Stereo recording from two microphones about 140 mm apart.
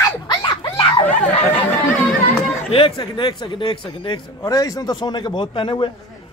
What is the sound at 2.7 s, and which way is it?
A man's voice, 40° left (ahead or behind).